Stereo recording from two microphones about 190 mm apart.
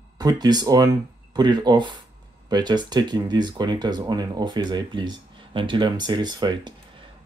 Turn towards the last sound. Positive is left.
turn(degrees=-20)  # may be behind; listen again after turning